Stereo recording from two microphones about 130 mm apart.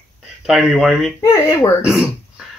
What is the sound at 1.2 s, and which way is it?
Speech, 20° left (ahead or behind).